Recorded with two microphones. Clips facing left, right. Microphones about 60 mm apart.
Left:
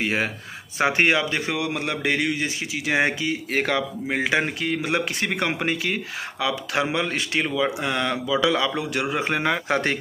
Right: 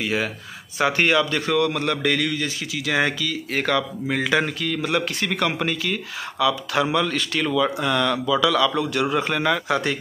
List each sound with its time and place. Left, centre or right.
0.0 s a man's voice: left